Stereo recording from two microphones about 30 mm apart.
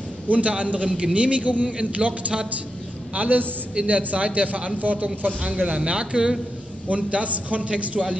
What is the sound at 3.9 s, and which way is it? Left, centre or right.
Speech, right.